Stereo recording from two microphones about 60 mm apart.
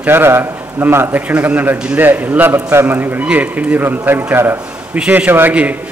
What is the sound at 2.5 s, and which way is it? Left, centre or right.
Speech, right.